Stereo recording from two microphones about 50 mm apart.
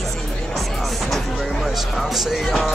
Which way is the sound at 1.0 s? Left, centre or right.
Centre.